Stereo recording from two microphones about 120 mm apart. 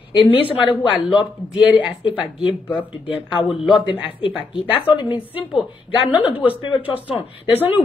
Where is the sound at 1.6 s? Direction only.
5° right (ahead or behind).